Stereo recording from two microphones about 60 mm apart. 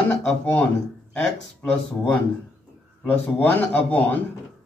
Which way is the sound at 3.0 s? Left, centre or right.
Left.